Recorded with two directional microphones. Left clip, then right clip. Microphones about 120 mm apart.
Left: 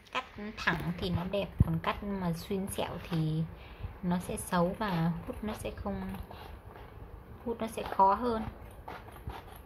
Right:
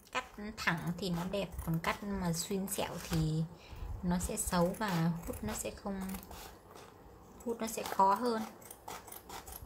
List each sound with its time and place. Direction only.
0.1 s a woman's voice: centre (ahead or behind)
7.5 s speech: centre (ahead or behind)